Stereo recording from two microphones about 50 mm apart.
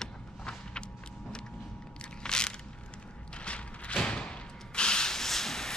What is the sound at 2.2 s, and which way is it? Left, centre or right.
Crushing, centre.